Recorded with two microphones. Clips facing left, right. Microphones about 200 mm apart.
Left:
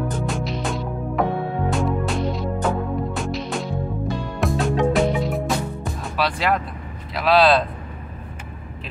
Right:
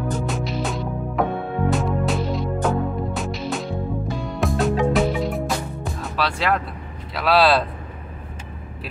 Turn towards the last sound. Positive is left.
turn(degrees=0)  # may be behind; listen again after turning